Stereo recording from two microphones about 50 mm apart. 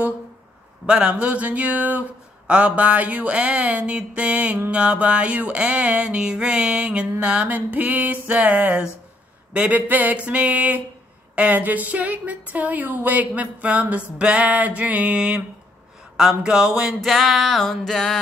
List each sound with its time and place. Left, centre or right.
0.8 s a woman's voice: right
7.4 s music: right
8.3 s a woman's voice: right
9.5 s a sound: right
9.8 s music: right
11.3 s a woman's voice: right; by 16.9 s centre
17.0 s music: centre
17.6 s a sound: centre